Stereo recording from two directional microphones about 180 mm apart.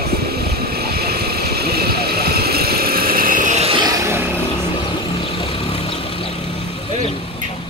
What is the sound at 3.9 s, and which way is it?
Vehicle, 15° right (ahead or behind).